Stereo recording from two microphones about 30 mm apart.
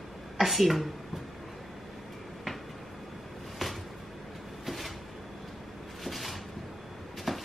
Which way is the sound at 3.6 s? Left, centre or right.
Centre.